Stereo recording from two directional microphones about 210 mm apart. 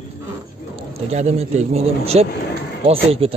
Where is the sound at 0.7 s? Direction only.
30° right (ahead or behind).